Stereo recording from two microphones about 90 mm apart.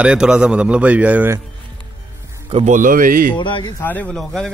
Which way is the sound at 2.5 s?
90° right.